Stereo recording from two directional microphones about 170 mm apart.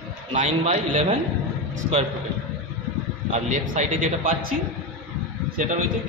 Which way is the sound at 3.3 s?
45° right (ahead or behind).